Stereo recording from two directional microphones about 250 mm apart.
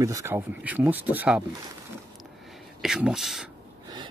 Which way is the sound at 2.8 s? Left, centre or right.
Centre.